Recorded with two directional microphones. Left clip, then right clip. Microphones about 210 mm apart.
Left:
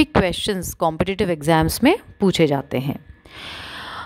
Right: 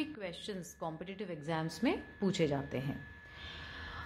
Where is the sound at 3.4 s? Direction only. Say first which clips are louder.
Left 15 dB; 55° left (ahead or behind).